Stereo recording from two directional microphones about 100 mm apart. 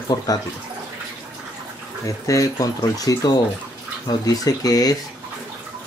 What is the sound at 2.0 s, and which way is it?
Speech, 35° left (ahead or behind).